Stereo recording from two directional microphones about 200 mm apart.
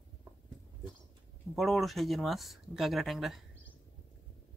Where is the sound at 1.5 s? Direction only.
Centre (ahead or behind).